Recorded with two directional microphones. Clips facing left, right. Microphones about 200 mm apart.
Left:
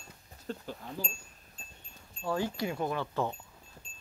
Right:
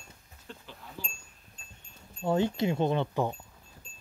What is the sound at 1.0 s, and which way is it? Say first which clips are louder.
Wind chime: left 3 dB; 45° left (ahead or behind).